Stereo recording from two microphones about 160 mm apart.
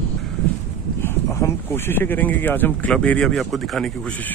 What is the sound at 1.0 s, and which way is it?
Speech, 15° left (ahead or behind).